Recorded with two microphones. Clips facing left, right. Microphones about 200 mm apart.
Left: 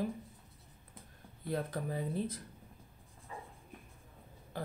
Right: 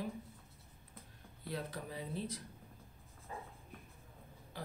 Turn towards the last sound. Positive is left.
turn(degrees=50)  # may be behind; listen again after turning